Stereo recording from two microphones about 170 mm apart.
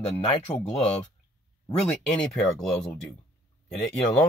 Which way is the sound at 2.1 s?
5° left (ahead or behind).